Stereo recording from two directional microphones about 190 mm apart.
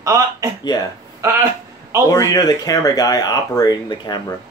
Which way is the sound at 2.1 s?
20° left (ahead or behind).